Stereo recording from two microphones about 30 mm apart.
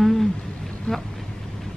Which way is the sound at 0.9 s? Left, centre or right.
Left.